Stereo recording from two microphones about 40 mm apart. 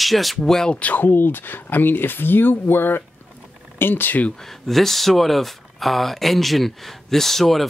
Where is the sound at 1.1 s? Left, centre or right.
Left.